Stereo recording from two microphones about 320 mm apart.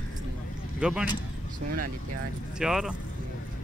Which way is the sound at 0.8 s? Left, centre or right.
Centre.